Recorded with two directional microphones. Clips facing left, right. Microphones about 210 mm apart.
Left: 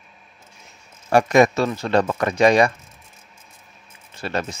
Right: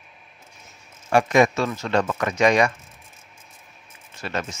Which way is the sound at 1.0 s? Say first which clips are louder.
Left 3 dB; 40° left (ahead or behind).